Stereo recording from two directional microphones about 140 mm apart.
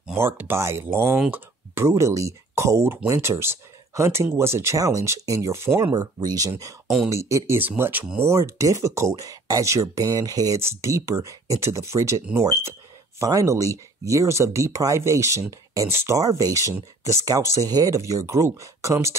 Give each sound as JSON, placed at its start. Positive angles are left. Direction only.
{"t": 0.1, "sound": "speech", "side_deg": -15}